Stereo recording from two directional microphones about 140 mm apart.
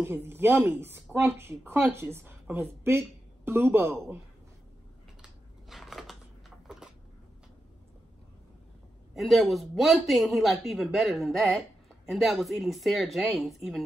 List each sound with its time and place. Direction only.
0.0 s a woman's voice: 15° right (ahead or behind)
5.2 s a sound: centre (ahead or behind)
9.1 s speech: centre (ahead or behind)